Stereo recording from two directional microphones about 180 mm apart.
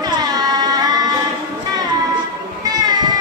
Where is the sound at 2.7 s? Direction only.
20° right (ahead or behind).